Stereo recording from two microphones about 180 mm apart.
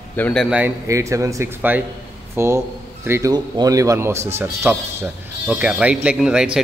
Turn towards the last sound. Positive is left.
turn(degrees=-5)  # may be behind; listen again after turning